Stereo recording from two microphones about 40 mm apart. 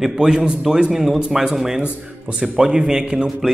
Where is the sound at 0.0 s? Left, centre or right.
Centre.